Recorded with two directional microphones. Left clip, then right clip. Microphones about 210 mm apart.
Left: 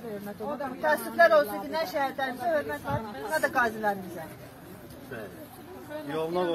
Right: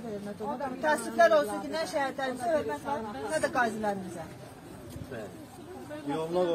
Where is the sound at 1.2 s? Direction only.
15° right (ahead or behind).